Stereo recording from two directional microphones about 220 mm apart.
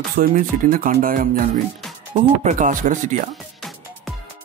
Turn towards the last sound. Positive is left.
turn(degrees=0)  # may be behind; listen again after turning